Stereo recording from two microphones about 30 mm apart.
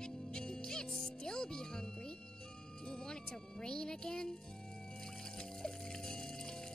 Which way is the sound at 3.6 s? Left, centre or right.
Left.